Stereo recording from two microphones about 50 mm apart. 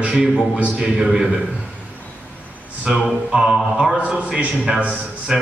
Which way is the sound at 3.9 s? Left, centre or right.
Right.